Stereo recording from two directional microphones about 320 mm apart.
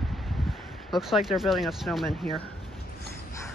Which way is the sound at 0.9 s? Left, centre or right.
Centre.